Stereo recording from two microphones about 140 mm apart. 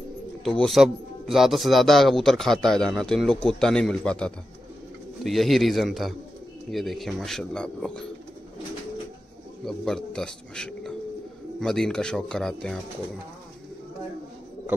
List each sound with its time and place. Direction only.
0.4 s speech: 5° left (ahead or behind)
9.7 s speech: 5° left (ahead or behind)